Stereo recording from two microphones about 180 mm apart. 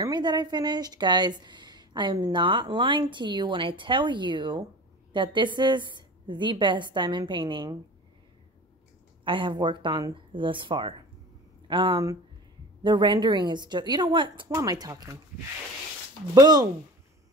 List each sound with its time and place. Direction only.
0.0 s a woman's voice: 25° right (ahead or behind)
9.2 s a woman's voice: 25° right (ahead or behind)
16.3 s a woman's voice: 25° right (ahead or behind)